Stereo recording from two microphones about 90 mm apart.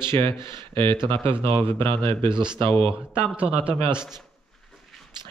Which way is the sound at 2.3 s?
60° right (ahead or behind).